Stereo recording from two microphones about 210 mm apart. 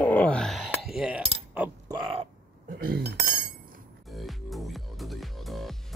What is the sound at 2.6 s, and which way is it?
Speech, 45° right (ahead or behind).